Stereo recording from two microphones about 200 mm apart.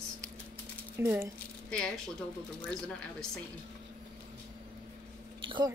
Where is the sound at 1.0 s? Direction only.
15° right (ahead or behind).